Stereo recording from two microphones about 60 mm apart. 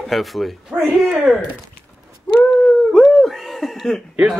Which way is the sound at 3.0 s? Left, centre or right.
Centre.